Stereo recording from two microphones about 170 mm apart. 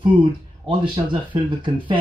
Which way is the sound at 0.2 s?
30° right (ahead or behind).